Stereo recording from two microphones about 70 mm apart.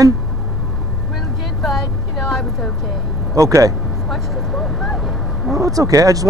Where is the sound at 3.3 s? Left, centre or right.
Right.